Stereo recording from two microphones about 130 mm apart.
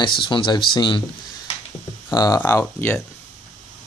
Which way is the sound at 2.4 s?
20° left (ahead or behind).